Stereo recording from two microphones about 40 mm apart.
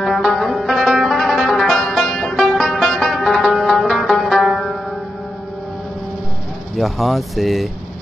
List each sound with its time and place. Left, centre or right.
0.0 s music: centre
3.7 s zither: centre
6.8 s speech: centre